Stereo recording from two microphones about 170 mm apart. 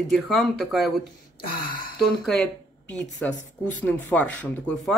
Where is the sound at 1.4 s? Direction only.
60° left (ahead or behind).